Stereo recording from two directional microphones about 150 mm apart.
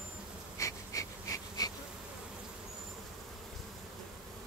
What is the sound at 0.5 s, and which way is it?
Wheeze, 20° left (ahead or behind).